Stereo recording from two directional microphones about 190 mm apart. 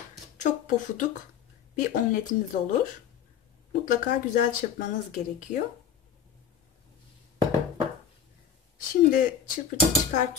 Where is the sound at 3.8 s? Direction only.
45° left (ahead or behind).